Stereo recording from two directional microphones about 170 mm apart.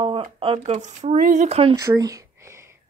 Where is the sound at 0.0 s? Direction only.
30° right (ahead or behind).